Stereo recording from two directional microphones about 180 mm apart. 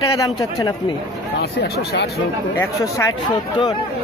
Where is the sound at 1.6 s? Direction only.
65° left (ahead or behind).